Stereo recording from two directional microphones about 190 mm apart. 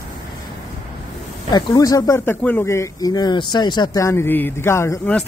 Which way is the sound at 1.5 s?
20° left (ahead or behind).